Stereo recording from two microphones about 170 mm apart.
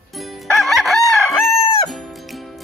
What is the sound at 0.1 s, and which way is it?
Crowing, centre (ahead or behind).